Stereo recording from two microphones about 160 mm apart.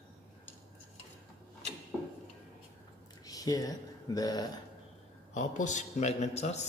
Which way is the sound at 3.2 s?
20° left (ahead or behind).